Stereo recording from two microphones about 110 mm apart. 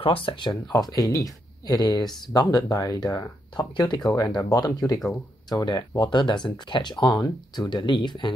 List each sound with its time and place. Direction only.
0.0 s speech: 50° left (ahead or behind)
0.7 s speech: 35° left (ahead or behind)
3.5 s speech: 40° left (ahead or behind)